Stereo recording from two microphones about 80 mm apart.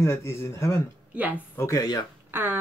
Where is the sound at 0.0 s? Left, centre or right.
Left.